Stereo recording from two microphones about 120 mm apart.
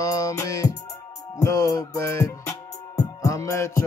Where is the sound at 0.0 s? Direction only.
25° left (ahead or behind).